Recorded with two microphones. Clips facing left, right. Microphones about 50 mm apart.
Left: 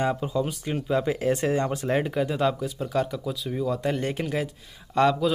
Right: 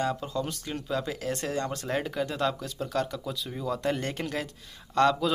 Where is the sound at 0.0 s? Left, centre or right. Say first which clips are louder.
Left 4 dB; centre.